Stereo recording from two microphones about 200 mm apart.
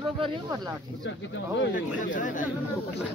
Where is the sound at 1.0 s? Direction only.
70° left (ahead or behind).